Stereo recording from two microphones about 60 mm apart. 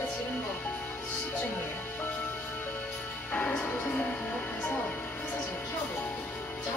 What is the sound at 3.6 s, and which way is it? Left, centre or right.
Music, left.